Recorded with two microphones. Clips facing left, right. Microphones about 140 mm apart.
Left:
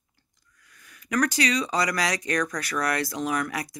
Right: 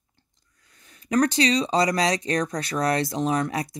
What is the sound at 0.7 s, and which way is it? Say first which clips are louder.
Speech: right 4 dB; 30° right (ahead or behind).